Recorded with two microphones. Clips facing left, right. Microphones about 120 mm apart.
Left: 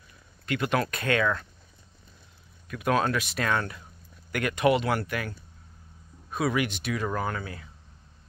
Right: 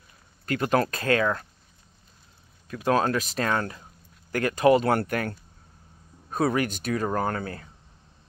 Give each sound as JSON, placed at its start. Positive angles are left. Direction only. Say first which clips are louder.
{"t": 0.5, "sound": "speech", "louder": "right 3 dB", "side_deg": -40}
{"t": 2.7, "sound": "speech", "louder": "right 2 dB", "side_deg": -30}
{"t": 6.3, "sound": "speech", "louder": "right 3 dB", "side_deg": -40}